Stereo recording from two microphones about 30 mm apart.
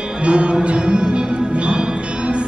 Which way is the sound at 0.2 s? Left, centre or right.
Right.